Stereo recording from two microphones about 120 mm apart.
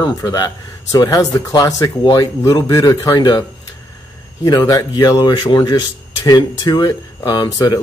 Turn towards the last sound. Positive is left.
turn(degrees=30)  # may be behind; listen again after turning